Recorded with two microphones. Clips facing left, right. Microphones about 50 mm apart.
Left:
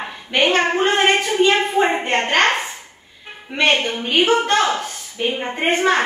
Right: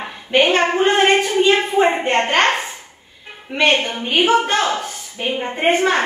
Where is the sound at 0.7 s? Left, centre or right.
Centre.